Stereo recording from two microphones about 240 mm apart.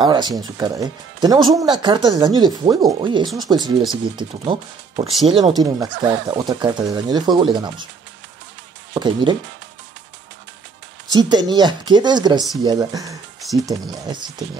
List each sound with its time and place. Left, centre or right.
0.0 s speech: centre
8.9 s speech: centre
11.1 s speech: centre